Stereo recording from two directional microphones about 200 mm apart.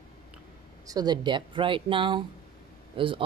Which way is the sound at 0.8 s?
20° right (ahead or behind).